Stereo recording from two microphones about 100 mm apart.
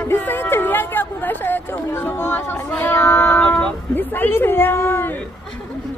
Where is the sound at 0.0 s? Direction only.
20° left (ahead or behind).